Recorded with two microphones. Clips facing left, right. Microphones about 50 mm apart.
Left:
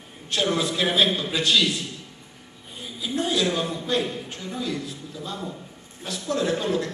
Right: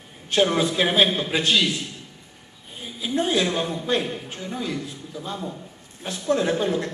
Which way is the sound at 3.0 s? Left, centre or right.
Right.